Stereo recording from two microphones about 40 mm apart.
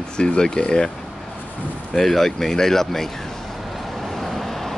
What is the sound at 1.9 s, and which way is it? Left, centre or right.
Speech, centre.